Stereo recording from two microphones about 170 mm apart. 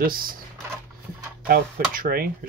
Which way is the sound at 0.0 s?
60° right (ahead or behind).